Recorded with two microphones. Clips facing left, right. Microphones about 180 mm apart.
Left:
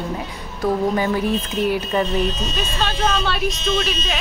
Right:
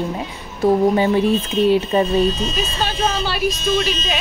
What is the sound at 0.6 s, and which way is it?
Speech, 25° right (ahead or behind).